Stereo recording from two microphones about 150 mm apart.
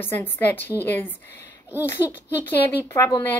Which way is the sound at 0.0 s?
15° left (ahead or behind).